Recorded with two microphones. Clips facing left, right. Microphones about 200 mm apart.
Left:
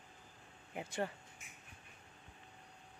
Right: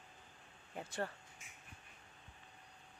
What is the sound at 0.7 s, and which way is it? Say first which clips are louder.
Speech: left 2 dB; 10° left (ahead or behind).